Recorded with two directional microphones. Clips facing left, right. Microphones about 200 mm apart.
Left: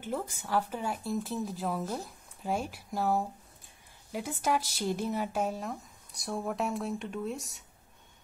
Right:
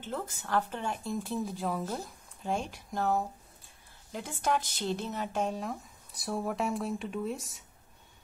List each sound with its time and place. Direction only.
0.0 s speech: 10° left (ahead or behind)